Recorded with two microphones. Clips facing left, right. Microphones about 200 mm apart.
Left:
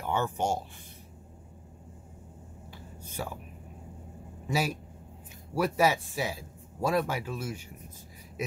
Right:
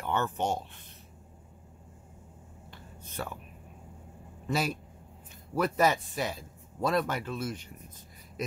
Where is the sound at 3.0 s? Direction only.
10° left (ahead or behind).